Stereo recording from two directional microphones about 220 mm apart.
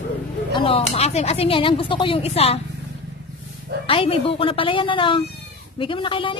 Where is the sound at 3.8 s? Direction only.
25° left (ahead or behind).